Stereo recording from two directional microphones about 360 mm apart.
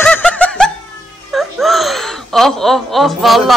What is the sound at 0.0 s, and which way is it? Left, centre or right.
Snicker, centre.